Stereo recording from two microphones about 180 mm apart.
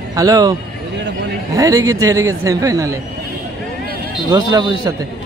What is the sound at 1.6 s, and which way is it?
A man's voice, 20° right (ahead or behind).